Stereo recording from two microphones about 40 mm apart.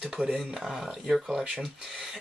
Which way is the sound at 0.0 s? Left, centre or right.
Centre.